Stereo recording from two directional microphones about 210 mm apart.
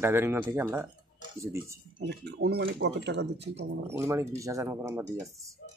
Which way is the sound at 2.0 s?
55° right (ahead or behind).